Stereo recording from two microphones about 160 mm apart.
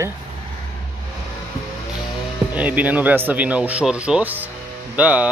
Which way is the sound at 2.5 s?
10° right (ahead or behind).